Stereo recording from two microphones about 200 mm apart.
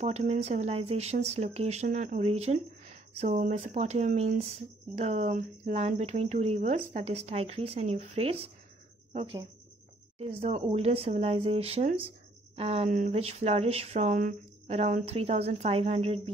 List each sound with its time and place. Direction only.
0.0 s speech: 35° right (ahead or behind)